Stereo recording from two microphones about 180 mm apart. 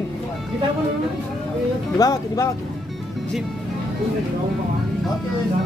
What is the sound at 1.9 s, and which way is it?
Speech, 20° left (ahead or behind).